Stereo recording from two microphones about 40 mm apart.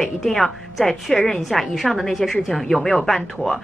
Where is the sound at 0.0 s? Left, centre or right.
Centre.